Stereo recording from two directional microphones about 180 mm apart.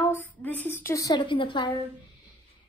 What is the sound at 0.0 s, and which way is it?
A woman's voice, 10° left (ahead or behind).